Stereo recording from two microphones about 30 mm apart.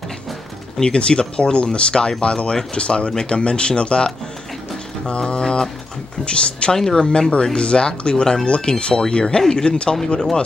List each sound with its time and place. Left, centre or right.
0.8 s speech: left
6.7 s speech: centre